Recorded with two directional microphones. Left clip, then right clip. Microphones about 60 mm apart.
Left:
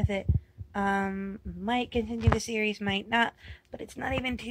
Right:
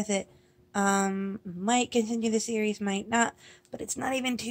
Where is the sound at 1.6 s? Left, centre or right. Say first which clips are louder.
Right 3 dB; right.